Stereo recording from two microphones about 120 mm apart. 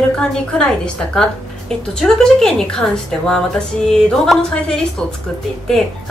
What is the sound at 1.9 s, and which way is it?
A woman's voice, 5° left (ahead or behind).